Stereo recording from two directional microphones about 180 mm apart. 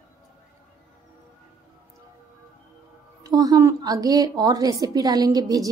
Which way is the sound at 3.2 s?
20° right (ahead or behind).